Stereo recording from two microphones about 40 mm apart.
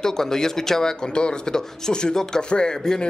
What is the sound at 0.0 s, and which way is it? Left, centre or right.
Speech, centre.